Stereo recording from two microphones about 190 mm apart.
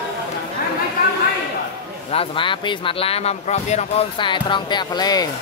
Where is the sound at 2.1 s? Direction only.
30° left (ahead or behind).